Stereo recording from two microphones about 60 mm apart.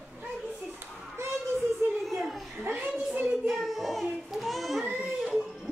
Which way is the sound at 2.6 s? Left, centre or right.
Right.